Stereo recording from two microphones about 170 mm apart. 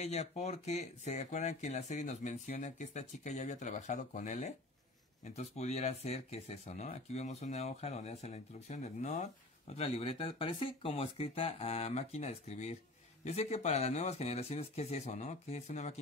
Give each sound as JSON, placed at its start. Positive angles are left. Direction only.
{"t": 0.0, "sound": "speech", "side_deg": 40}